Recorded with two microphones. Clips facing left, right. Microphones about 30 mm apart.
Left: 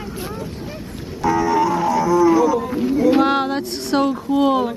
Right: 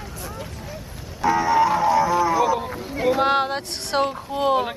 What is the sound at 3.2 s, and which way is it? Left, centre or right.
Music, centre.